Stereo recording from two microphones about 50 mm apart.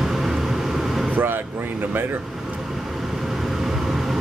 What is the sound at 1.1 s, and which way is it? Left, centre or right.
Vehicle, right.